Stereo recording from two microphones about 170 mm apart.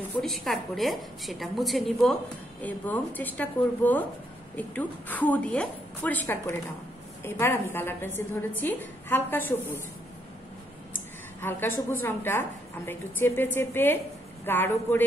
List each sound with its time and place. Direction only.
0.2 s a woman's voice: centre (ahead or behind)
11.4 s a woman's voice: 10° left (ahead or behind)